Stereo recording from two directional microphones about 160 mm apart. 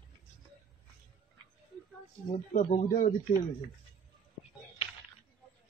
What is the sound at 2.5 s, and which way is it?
Speech, 50° left (ahead or behind).